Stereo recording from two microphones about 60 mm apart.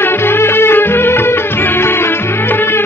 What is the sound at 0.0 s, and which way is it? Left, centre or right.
Music, left.